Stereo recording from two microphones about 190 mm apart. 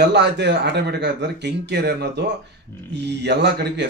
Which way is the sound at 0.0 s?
65° right (ahead or behind).